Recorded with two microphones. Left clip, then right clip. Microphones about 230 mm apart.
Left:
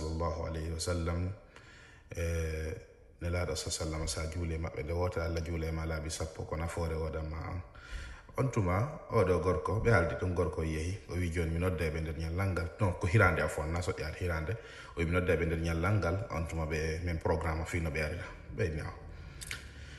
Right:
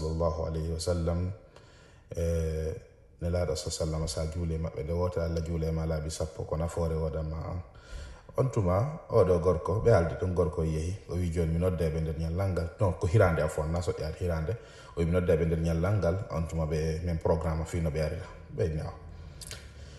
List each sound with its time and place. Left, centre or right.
0.2 s a man's voice: right
2.1 s a man's voice: centre